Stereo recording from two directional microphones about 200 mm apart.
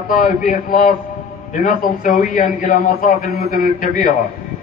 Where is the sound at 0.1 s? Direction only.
40° left (ahead or behind).